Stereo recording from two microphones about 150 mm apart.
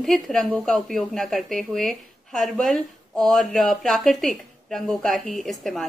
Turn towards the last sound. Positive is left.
turn(degrees=0)  # may be behind; listen again after turning